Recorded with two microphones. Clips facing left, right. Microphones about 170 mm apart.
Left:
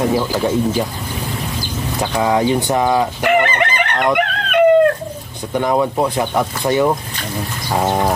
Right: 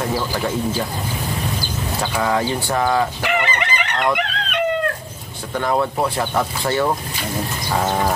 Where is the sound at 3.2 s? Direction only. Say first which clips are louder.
Left 6 dB; 50° left (ahead or behind).